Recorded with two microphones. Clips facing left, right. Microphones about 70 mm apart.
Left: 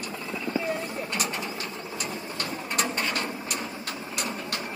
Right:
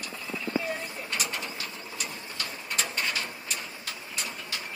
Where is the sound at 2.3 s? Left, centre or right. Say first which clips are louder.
Left 4 dB; left.